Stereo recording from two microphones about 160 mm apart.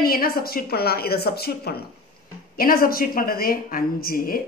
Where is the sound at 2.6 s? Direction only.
65° left (ahead or behind).